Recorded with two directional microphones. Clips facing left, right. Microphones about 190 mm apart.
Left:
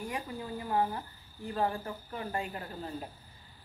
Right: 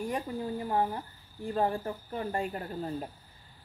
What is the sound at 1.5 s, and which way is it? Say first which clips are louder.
Speech: right 3 dB; 35° right (ahead or behind).